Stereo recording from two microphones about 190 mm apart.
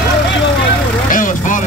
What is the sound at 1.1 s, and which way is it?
Vehicle, 45° left (ahead or behind).